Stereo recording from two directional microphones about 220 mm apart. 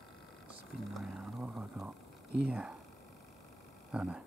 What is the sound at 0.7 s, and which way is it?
Speech, centre (ahead or behind).